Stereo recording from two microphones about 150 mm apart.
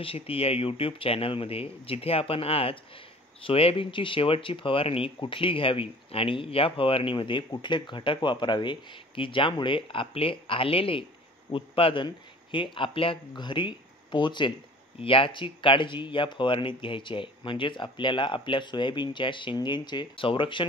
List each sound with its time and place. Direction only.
0.0 s speech: 40° left (ahead or behind)